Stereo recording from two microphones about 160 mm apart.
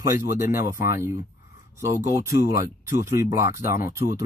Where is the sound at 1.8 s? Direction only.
20° right (ahead or behind).